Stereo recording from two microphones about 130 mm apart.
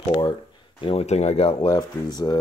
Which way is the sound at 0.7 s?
45° left (ahead or behind).